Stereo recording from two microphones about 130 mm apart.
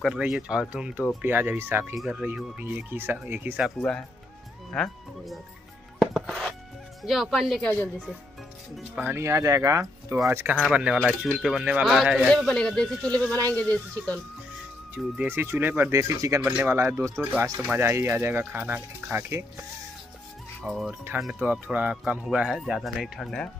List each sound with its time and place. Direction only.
0.0 s speech: 5° right (ahead or behind)
4.7 s speech: 5° left (ahead or behind)
5.9 s chopping: 5° right (ahead or behind)
7.0 s speech: centre (ahead or behind)
9.0 s speech: 20° right (ahead or behind); by 14.2 s 10° left (ahead or behind)
15.1 s speech: 15° right (ahead or behind)
16.4 s speech: 10° right (ahead or behind)
16.7 s speech: 20° right (ahead or behind)
20.6 s speech: centre (ahead or behind)